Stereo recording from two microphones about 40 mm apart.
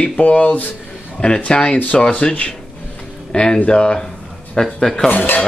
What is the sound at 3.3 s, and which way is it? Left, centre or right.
Speech, left.